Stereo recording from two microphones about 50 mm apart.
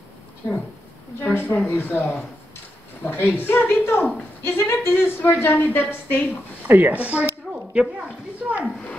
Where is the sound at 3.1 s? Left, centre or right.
Left.